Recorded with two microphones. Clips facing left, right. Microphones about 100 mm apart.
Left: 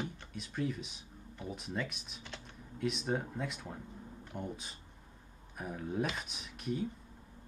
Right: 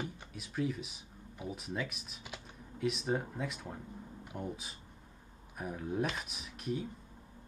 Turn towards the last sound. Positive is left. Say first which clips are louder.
# left 1 dB
turn(degrees=0)  # may be behind; listen again after turning